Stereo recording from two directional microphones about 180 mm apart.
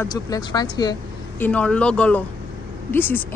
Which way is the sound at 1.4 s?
5° left (ahead or behind).